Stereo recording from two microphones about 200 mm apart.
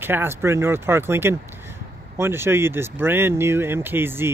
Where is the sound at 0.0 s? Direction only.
10° right (ahead or behind).